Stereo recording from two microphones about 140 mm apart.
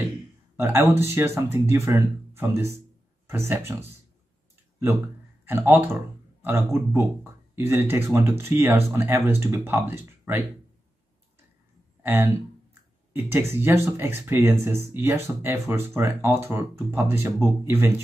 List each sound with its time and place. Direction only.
0.6 s speech: 15° right (ahead or behind)
5.4 s speech: 15° right (ahead or behind)
12.0 s speech: 15° right (ahead or behind)